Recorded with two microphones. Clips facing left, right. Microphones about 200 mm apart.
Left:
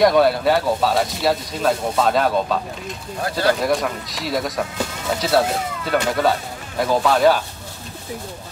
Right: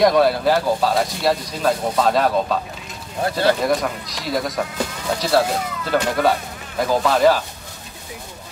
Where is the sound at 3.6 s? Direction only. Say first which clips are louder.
Even; centre (ahead or behind).